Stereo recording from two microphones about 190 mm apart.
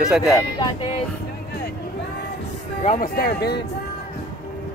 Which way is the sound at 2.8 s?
45° left (ahead or behind).